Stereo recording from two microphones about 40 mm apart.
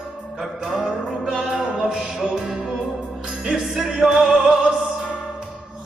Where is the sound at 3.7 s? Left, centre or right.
Centre.